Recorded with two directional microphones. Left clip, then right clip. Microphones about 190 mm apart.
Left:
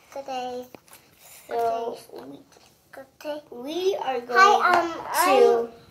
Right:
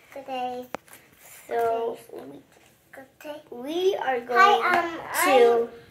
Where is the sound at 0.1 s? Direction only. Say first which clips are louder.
Even; 45° left (ahead or behind).